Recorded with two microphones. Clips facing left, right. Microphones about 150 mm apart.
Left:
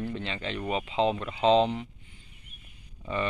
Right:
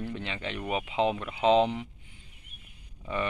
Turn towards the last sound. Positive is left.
turn(degrees=-5)  # may be behind; listen again after turning